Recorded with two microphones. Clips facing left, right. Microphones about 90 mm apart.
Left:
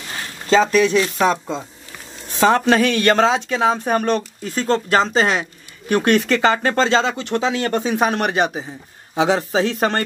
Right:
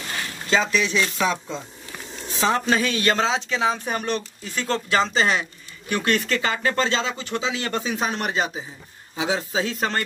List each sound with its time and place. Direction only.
0.5 s speech: 45° left (ahead or behind)
2.3 s speech: 60° left (ahead or behind)
4.6 s speech: 35° left (ahead or behind); by 10.0 s 65° left (ahead or behind)